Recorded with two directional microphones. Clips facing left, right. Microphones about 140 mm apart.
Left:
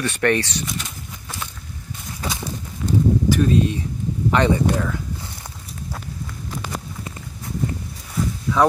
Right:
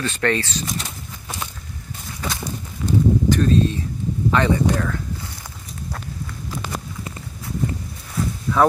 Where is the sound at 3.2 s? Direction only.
10° left (ahead or behind).